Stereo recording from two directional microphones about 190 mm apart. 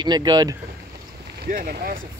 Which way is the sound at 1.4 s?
55° right (ahead or behind).